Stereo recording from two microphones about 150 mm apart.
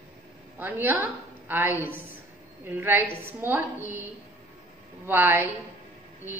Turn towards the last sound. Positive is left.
turn(degrees=-15)  # may be behind; listen again after turning